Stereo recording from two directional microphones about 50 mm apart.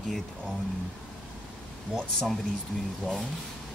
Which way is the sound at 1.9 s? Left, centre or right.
Right.